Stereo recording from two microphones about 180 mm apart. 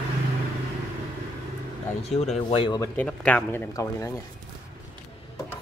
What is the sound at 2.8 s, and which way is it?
Speech, 10° left (ahead or behind).